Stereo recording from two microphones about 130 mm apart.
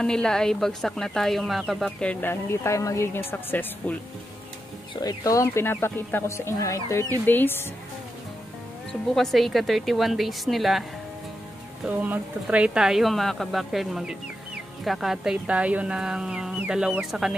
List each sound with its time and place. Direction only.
0.0 s a woman's voice: 5° left (ahead or behind)
2.6 s speech: 20° left (ahead or behind)
5.0 s speech: 25° left (ahead or behind)
9.1 s a woman's voice: centre (ahead or behind)